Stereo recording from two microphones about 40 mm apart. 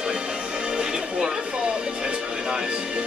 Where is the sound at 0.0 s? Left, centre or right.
Right.